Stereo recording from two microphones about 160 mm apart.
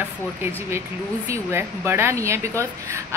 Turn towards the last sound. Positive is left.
turn(degrees=-20)  # may be behind; listen again after turning